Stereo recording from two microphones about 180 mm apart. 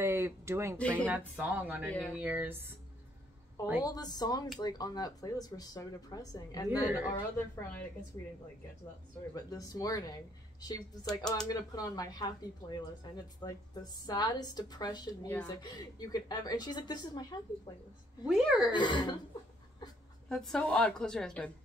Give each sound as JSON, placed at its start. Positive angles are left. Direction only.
{"t": 0.0, "sound": "a woman's voice", "side_deg": -15}
{"t": 1.9, "sound": "a woman's voice", "side_deg": 5}
{"t": 2.1, "sound": "a woman's voice", "side_deg": -10}
{"t": 3.8, "sound": "speech", "side_deg": 20}
{"t": 6.7, "sound": "a woman's voice", "side_deg": -10}
{"t": 7.2, "sound": "a woman's voice", "side_deg": 15}
{"t": 9.3, "sound": "speech", "side_deg": 20}
{"t": 18.2, "sound": "a woman's voice", "side_deg": -5}
{"t": 18.7, "sound": "speech", "side_deg": 25}
{"t": 20.2, "sound": "a woman's voice", "side_deg": 5}